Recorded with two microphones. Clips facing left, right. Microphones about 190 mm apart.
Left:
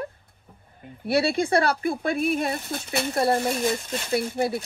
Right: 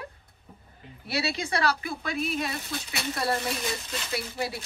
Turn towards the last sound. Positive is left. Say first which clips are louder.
# left 8 dB
turn(degrees=50)  # may be behind; listen again after turning